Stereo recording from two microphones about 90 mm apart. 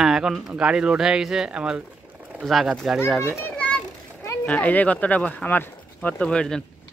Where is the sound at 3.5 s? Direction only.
15° left (ahead or behind).